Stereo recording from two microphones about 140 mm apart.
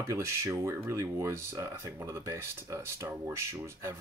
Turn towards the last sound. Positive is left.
turn(degrees=-20)  # may be behind; listen again after turning